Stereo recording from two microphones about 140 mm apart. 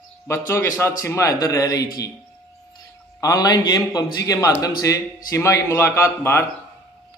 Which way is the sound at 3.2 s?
25° left (ahead or behind).